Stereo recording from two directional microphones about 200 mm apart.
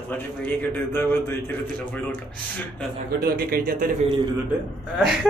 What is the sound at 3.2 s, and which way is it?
Speech, 50° right (ahead or behind).